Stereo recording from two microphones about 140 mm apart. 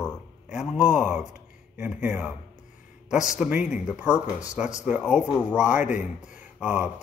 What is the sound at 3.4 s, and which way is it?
Speech, 5° right (ahead or behind).